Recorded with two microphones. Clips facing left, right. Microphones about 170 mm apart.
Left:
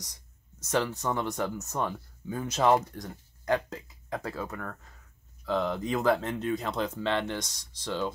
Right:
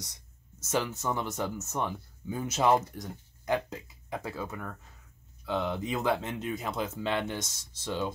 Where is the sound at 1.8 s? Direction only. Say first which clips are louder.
Left 2 dB; 15° right (ahead or behind).